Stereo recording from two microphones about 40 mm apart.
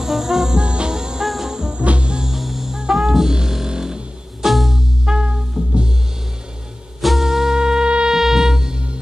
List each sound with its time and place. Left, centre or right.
0.0 s music: centre
1.2 s brass instrument: centre
1.5 s music: centre
1.8 s music: right
2.2 s music: centre; by 5.9 s right
7.0 s music: centre